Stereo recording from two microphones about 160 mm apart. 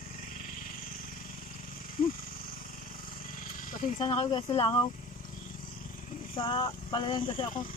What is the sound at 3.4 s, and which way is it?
Wild animals, 60° left (ahead or behind).